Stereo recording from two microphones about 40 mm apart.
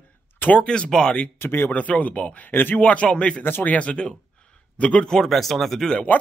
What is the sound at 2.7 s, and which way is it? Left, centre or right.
Speech, left.